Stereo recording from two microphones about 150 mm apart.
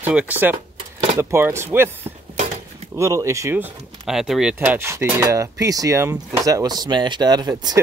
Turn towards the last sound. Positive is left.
turn(degrees=-25)  # may be behind; listen again after turning